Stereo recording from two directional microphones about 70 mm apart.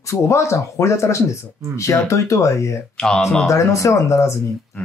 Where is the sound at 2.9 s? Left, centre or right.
Centre.